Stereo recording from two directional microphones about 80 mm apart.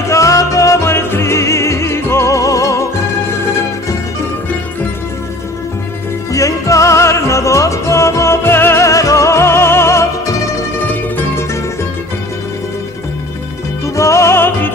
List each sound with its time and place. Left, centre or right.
0.1 s music: left
6.3 s music: left
13.9 s music: left